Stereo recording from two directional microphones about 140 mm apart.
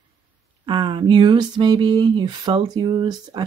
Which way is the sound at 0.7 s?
35° right (ahead or behind).